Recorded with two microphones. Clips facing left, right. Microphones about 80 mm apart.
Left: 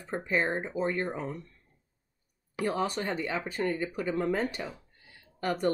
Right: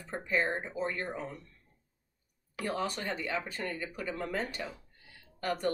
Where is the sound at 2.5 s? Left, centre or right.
Left.